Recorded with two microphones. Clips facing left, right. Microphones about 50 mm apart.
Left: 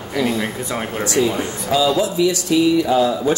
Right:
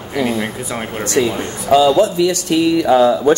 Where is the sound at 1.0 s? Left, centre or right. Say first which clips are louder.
Right 2 dB; right.